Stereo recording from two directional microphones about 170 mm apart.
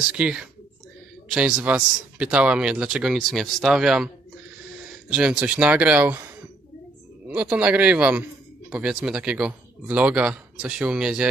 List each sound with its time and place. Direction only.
0.1 s a man's voice: 5° right (ahead or behind)
5.1 s a man's voice: 5° right (ahead or behind)
7.2 s a man's voice: 10° right (ahead or behind)